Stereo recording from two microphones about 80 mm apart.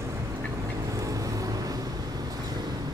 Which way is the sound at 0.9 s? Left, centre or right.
Right.